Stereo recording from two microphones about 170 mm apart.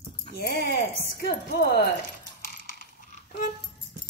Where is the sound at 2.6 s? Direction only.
50° left (ahead or behind).